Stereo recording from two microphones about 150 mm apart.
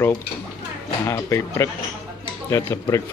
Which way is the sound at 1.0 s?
20° left (ahead or behind).